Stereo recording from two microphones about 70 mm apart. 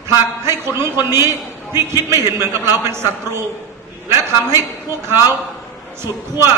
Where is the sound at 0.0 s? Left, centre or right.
Right.